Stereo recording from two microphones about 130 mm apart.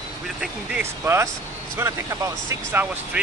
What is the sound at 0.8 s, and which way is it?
Speech, 20° right (ahead or behind).